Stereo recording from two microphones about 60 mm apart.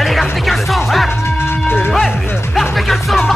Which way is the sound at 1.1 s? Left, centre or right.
Left.